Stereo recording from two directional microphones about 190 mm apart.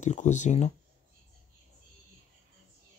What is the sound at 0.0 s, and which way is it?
Speech, 40° left (ahead or behind).